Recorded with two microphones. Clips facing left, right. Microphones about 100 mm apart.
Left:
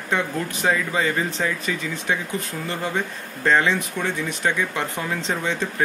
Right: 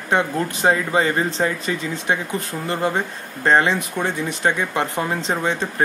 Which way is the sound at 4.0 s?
20° right (ahead or behind).